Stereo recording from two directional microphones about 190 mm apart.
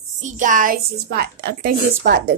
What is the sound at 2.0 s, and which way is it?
Speech, 60° right (ahead or behind).